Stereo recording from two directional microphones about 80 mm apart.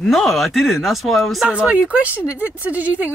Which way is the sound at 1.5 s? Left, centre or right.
Centre.